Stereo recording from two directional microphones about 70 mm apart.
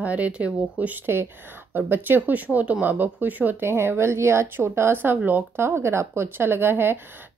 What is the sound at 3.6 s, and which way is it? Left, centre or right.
Speech, right.